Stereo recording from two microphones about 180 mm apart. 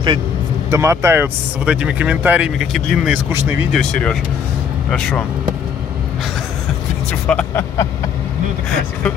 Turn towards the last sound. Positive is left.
turn(degrees=5)  # may be behind; listen again after turning